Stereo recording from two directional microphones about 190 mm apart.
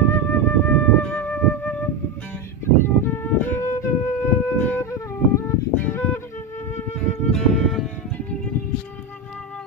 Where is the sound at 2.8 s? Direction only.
10° left (ahead or behind).